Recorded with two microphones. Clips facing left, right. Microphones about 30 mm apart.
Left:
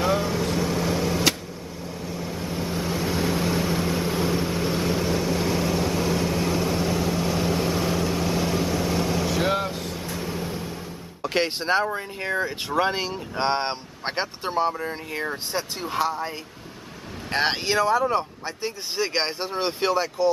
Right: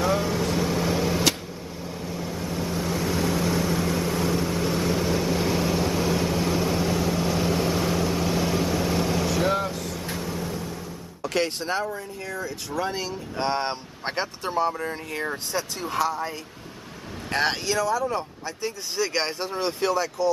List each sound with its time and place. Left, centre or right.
0.0 s vehicle: centre
9.4 s vehicle: centre
11.2 s speech: left
14.9 s speech: centre
17.3 s speech: centre
17.6 s speech: left